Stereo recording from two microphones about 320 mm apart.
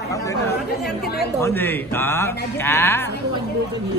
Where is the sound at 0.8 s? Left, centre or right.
Left.